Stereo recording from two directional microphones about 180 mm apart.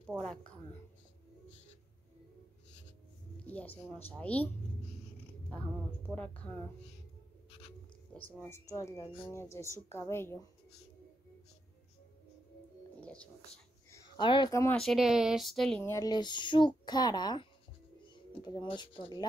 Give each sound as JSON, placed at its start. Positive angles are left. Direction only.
{"t": 0.1, "sound": "a woman's voice", "side_deg": -15}
{"t": 3.4, "sound": "speech", "side_deg": 10}
{"t": 8.4, "sound": "speech", "side_deg": 15}
{"t": 13.0, "sound": "a sound", "side_deg": 5}
{"t": 13.8, "sound": "speech", "side_deg": 20}
{"t": 14.8, "sound": "speech", "side_deg": 0}
{"t": 15.8, "sound": "speech", "side_deg": 20}